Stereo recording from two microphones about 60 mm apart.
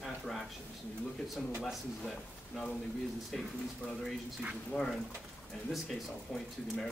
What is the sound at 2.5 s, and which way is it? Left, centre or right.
Speech, centre.